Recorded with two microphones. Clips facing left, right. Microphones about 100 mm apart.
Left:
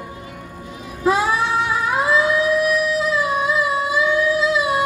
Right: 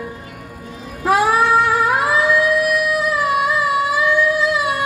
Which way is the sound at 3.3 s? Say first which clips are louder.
Right 2 dB; 65° right (ahead or behind).